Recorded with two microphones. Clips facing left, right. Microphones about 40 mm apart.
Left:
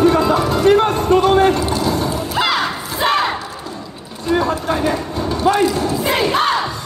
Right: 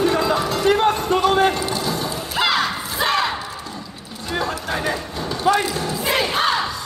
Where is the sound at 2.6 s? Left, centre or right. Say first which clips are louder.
Left 3 dB; centre.